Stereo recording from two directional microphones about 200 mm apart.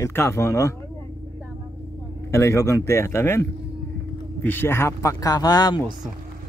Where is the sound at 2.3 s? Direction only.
15° left (ahead or behind).